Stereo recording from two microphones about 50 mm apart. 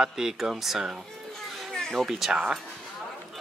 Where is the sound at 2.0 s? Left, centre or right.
Centre.